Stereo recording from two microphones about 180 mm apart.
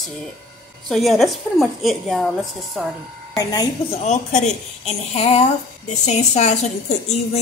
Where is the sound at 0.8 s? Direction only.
Centre (ahead or behind).